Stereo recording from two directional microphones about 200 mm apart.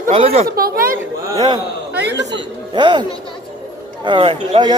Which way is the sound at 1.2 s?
20° right (ahead or behind).